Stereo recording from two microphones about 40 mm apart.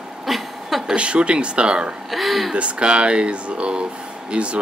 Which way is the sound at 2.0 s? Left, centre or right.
Centre.